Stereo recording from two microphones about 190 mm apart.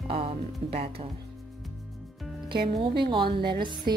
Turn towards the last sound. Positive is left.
turn(degrees=-25)  # may be behind; listen again after turning